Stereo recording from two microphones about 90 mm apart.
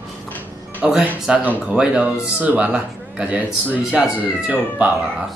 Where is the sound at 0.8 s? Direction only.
10° right (ahead or behind).